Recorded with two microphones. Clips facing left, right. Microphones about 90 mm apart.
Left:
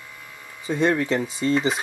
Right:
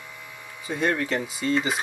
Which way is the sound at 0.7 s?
25° left (ahead or behind).